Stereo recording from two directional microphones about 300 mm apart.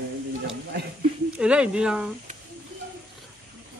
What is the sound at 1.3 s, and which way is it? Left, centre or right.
Speech, centre.